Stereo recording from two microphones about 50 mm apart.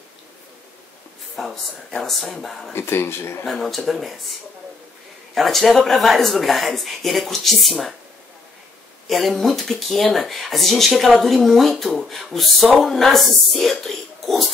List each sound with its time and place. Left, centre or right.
1.5 s speech: centre
2.7 s speech: left
3.4 s speech: centre
9.1 s speech: centre